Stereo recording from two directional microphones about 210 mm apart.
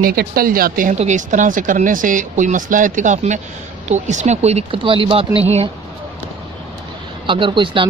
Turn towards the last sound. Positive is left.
turn(degrees=-25)  # may be behind; listen again after turning